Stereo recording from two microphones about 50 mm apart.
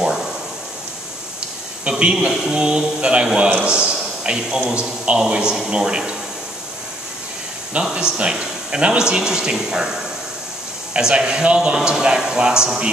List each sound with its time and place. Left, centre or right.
0.0 s a sound: centre
1.9 s a man's voice: centre
7.7 s speech: centre